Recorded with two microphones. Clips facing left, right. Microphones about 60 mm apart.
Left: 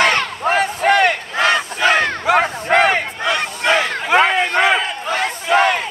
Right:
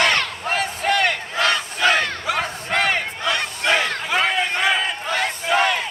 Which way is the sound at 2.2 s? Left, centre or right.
Left.